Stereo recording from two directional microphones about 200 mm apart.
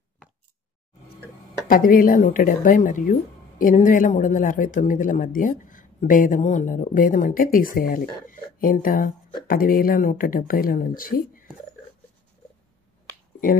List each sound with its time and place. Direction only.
1.7 s speech: 45° left (ahead or behind)